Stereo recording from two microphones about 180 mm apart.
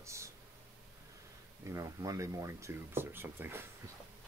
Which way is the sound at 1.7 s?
20° right (ahead or behind).